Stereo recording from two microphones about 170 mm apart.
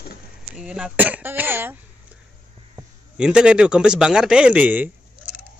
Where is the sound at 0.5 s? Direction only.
5° right (ahead or behind).